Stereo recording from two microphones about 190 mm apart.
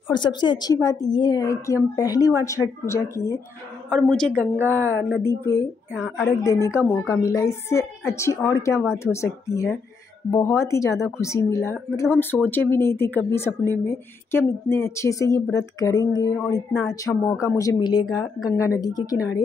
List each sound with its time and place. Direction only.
0.1 s a woman's voice: 25° left (ahead or behind)
3.9 s a woman's voice: centre (ahead or behind)
5.9 s a woman's voice: centre (ahead or behind)
6.4 s a woman's voice: 15° left (ahead or behind)